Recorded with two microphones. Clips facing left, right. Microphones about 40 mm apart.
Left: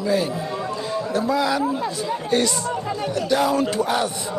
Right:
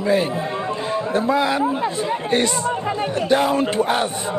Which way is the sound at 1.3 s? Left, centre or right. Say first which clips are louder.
Right 2 dB; right.